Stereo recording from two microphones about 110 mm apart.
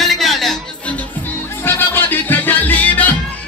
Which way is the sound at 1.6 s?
20° left (ahead or behind).